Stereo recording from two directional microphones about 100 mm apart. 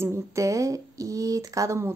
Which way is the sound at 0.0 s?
30° right (ahead or behind).